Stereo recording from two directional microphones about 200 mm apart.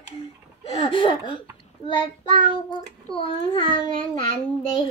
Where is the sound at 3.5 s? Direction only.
20° left (ahead or behind).